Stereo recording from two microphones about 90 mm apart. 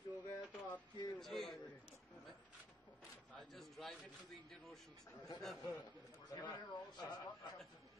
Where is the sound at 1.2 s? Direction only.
5° left (ahead or behind).